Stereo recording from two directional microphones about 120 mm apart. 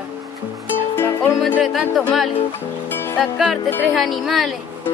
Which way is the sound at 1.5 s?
Centre (ahead or behind).